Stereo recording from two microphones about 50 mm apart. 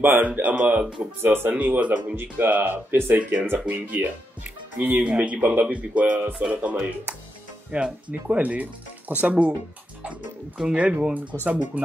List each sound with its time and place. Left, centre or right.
0.4 s speech: right
1.2 s speech: right
1.5 s speech: right
2.1 s speech: right
10.6 s speech: right